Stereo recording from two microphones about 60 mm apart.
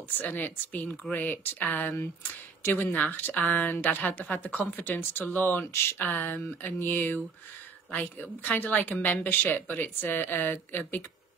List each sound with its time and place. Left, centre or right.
0.2 s a woman's voice: left